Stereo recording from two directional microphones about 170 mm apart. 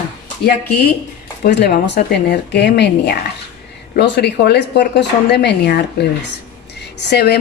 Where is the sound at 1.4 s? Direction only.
75° left (ahead or behind).